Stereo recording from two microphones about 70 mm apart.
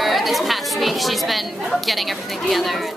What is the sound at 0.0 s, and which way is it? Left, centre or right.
A woman's voice, centre.